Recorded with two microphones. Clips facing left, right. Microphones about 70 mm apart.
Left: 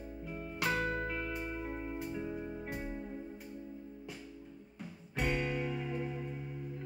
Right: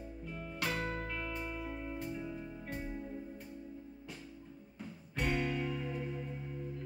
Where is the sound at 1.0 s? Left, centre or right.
Centre.